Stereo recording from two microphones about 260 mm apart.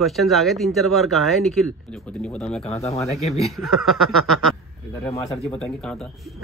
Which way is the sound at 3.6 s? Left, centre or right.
Centre.